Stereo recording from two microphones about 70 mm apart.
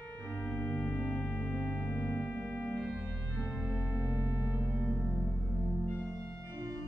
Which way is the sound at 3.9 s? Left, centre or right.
Right.